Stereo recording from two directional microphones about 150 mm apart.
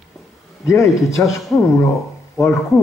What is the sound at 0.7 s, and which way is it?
Speech, 20° left (ahead or behind).